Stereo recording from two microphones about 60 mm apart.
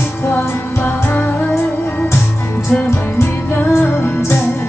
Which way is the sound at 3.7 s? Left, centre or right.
Left.